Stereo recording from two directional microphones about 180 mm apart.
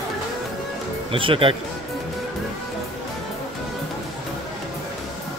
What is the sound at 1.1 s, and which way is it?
Speech, 30° right (ahead or behind).